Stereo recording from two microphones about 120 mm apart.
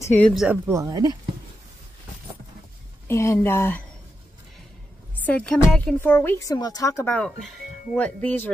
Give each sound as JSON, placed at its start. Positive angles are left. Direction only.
{"t": 0.0, "sound": "speech", "side_deg": 20}
{"t": 0.3, "sound": "speech", "side_deg": -5}
{"t": 0.7, "sound": "speech", "side_deg": -25}
{"t": 3.1, "sound": "a woman's voice", "side_deg": 25}
{"t": 5.2, "sound": "a woman's voice", "side_deg": 10}
{"t": 5.9, "sound": "a woman's voice", "side_deg": 20}
{"t": 7.9, "sound": "a woman's voice", "side_deg": 10}